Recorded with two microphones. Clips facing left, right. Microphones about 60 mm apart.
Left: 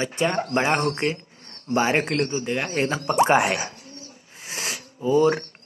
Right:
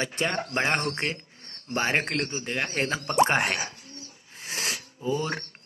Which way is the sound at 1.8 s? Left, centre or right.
Centre.